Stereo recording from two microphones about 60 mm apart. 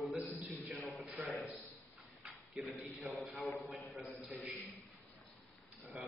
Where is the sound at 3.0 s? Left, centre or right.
Centre.